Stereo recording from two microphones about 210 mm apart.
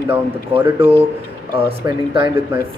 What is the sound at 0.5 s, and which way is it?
Speech, 10° right (ahead or behind).